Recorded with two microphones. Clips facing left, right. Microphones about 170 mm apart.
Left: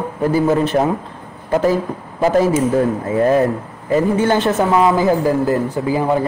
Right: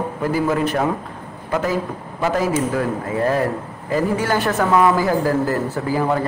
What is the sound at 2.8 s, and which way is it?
Speech, 25° left (ahead or behind).